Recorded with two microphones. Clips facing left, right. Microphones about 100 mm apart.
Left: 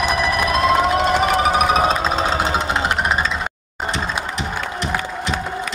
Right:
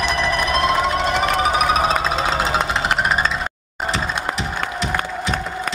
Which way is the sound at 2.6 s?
55° right (ahead or behind).